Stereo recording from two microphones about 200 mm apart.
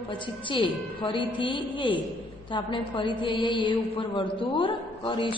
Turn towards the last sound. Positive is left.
turn(degrees=25)  # may be behind; listen again after turning